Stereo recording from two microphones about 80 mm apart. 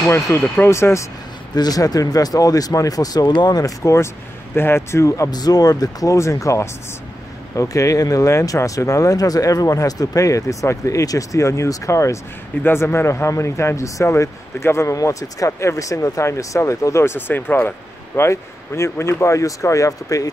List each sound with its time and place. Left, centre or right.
0.0 s speech: left
1.5 s speech: left
4.6 s speech: left
5.3 s speech: left